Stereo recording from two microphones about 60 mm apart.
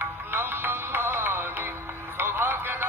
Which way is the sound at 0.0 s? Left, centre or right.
Right.